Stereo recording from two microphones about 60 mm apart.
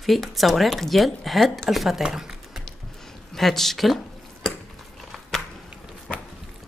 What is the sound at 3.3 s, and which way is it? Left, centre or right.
Speech, centre.